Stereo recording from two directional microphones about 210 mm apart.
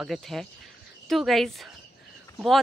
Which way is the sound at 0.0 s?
Centre (ahead or behind).